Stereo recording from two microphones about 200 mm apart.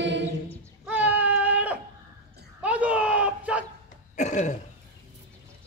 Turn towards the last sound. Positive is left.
turn(degrees=35)  # may be behind; listen again after turning